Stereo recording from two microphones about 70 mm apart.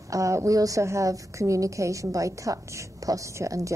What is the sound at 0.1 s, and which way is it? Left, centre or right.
A woman's voice, right.